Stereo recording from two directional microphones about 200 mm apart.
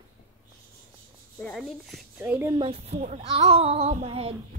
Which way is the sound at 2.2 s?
10° right (ahead or behind).